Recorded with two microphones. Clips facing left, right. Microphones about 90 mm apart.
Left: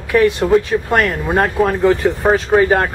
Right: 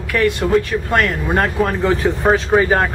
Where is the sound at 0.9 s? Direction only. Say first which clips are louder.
Left 1 dB; 10° left (ahead or behind).